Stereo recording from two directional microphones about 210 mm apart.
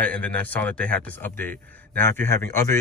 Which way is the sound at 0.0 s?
5° left (ahead or behind).